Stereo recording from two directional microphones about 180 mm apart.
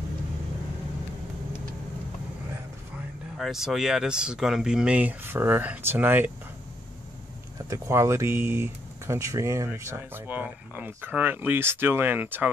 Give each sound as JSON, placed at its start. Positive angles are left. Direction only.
{"t": 3.3, "sound": "speech", "side_deg": 0}
{"t": 7.7, "sound": "speech", "side_deg": -15}